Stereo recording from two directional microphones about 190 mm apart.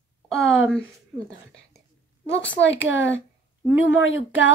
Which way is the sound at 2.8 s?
80° left.